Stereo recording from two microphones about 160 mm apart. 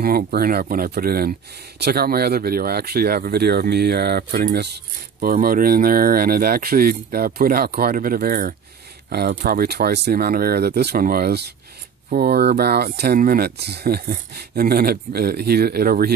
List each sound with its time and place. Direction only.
0.0 s speech: 70° right (ahead or behind)
5.2 s speech: 65° right (ahead or behind)
9.1 s speech: 80° right